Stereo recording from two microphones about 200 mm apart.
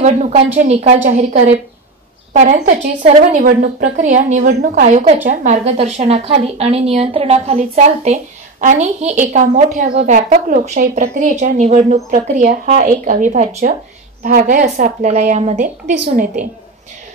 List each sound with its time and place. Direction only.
0.0 s a woman's voice: 35° right (ahead or behind)